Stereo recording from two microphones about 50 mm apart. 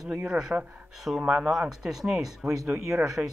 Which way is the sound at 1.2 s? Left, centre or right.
Centre.